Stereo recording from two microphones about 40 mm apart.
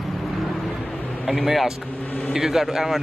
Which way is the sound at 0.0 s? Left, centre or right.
Centre.